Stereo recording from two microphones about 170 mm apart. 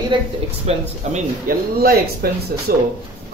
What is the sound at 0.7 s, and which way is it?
Speech, 35° right (ahead or behind).